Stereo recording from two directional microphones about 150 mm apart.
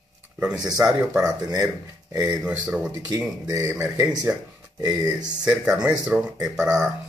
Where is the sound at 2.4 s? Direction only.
10° right (ahead or behind).